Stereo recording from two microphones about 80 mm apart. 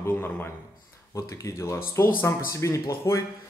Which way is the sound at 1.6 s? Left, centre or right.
Left.